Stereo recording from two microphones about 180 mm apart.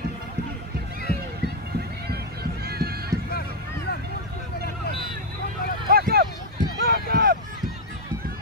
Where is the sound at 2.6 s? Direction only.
60° right (ahead or behind).